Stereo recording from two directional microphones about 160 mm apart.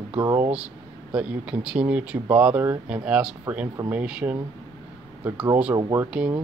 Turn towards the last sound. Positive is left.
turn(degrees=-10)  # may be behind; listen again after turning